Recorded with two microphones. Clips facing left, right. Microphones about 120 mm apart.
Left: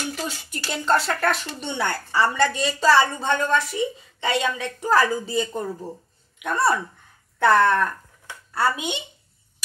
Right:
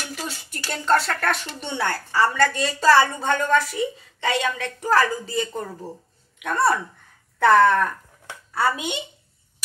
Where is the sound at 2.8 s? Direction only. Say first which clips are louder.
Right 1 dB; 5° right (ahead or behind).